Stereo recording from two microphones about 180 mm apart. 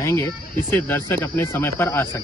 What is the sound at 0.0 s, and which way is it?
Speech, 15° left (ahead or behind).